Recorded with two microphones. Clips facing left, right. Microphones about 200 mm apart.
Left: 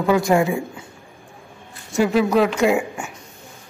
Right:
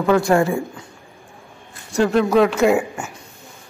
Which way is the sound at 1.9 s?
Centre (ahead or behind).